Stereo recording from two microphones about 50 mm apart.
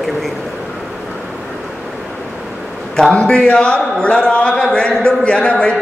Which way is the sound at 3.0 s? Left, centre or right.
Centre.